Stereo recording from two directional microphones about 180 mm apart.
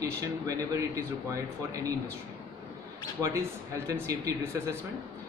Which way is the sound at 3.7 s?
15° right (ahead or behind).